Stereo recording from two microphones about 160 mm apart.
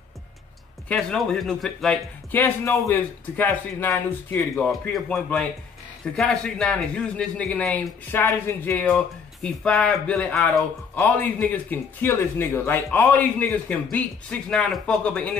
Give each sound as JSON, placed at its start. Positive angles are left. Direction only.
{"t": 0.8, "sound": "speech", "side_deg": 0}
{"t": 2.3, "sound": "speech", "side_deg": 15}